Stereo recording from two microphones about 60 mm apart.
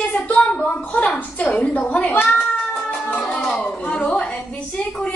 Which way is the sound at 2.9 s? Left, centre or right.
Left.